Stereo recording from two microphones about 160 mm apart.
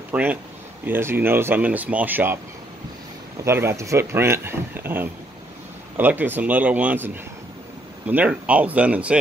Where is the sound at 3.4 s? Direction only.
15° right (ahead or behind).